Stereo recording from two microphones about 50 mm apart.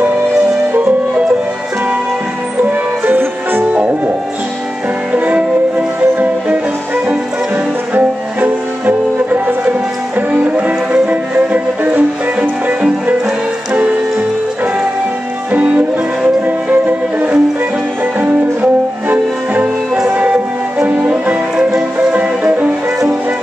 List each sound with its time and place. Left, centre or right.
3.1 s music: right
3.7 s music: right
5.1 s music: right
15.5 s music: right
16.8 s music: right
22.1 s music: right